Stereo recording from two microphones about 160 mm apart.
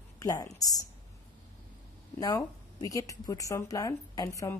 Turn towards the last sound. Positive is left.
turn(degrees=20)  # may be behind; listen again after turning